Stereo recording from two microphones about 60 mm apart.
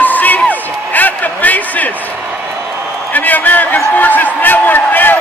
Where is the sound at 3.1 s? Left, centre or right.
Left.